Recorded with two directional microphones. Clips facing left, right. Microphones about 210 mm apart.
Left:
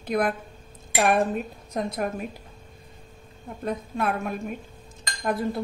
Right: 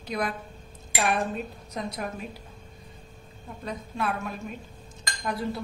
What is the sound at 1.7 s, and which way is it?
Speech, 50° left (ahead or behind).